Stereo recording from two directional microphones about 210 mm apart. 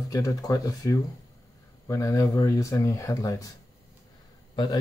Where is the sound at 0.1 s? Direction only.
15° left (ahead or behind).